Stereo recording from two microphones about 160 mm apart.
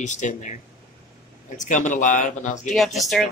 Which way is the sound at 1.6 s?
50° left (ahead or behind).